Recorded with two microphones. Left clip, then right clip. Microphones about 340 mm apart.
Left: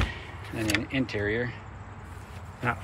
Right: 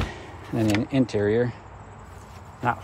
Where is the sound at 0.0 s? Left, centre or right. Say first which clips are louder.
Even; centre.